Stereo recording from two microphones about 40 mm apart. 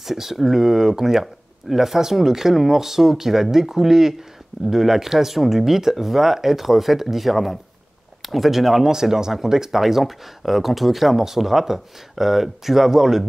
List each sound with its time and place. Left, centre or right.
0.0 s speech: centre